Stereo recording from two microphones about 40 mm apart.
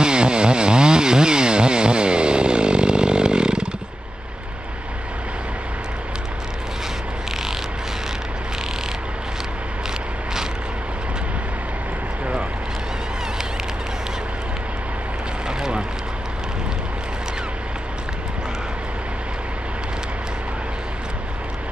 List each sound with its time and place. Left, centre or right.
0.0 s chainsaw: right